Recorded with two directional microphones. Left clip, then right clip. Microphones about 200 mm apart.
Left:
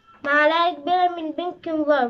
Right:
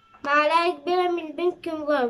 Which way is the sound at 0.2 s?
5° right (ahead or behind).